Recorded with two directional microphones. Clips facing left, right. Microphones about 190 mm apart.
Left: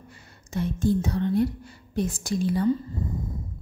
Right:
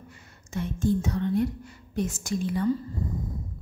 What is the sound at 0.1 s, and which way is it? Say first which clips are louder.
Speech: left 3 dB; 35° left (ahead or behind).